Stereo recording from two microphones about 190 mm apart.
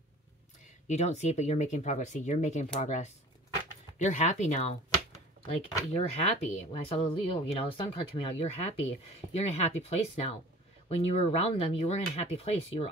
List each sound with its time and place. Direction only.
0.8 s speech: 35° left (ahead or behind)
5.9 s speech: 35° left (ahead or behind)